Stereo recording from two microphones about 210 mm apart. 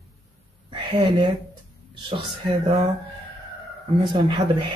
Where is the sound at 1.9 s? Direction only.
20° right (ahead or behind).